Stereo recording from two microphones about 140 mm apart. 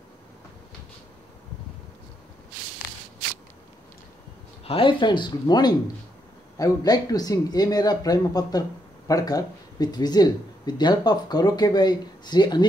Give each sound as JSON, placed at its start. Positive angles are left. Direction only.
{"t": 4.6, "sound": "speech", "side_deg": 40}